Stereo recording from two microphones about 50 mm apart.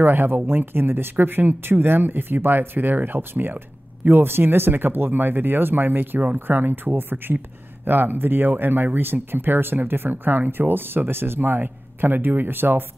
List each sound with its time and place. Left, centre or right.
0.0 s speech: right